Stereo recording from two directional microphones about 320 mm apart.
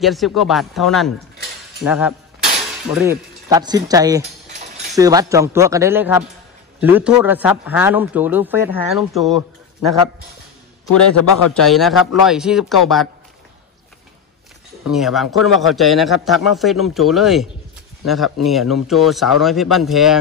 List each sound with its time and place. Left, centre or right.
0.0 s speech: centre
10.9 s a man's voice: left
11.5 s speech: centre
14.9 s speech: centre